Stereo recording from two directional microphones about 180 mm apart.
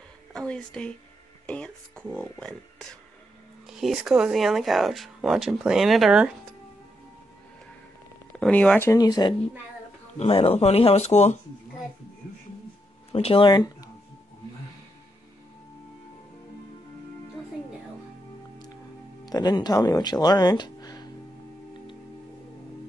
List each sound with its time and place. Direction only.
0.3 s a woman's voice: 5° left (ahead or behind)
1.4 s music: 5° left (ahead or behind)
2.1 s speech: 5° left (ahead or behind)
8.4 s speech: 5° left (ahead or behind)
10.1 s speech: 35° left (ahead or behind)
13.1 s speech: 30° left (ahead or behind)
19.2 s speech: 20° left (ahead or behind)